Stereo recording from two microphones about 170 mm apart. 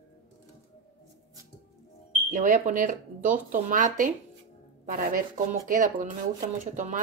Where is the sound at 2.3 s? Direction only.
45° right (ahead or behind).